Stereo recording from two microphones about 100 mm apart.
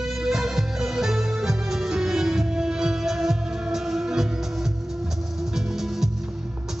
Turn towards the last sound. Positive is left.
turn(degrees=-5)  # may be behind; listen again after turning